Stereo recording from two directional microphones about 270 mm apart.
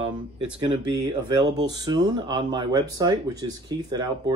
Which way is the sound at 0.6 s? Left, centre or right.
Centre.